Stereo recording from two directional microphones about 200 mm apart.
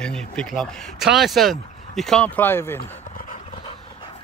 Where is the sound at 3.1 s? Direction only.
40° left (ahead or behind).